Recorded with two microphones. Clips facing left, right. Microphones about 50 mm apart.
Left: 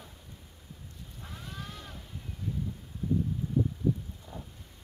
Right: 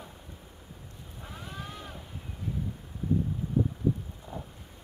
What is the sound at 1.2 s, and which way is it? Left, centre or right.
Boat, centre.